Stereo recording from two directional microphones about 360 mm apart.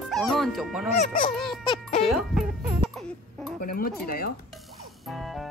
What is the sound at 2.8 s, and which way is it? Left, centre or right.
Baby cry, centre.